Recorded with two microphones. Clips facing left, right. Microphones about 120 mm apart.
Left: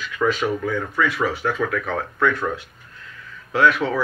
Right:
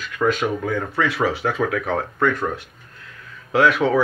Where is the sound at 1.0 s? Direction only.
30° right (ahead or behind).